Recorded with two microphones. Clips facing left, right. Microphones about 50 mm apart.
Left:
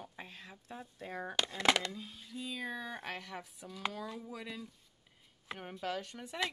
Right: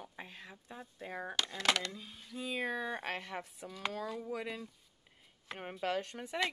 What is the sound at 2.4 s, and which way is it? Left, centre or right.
Speech, right.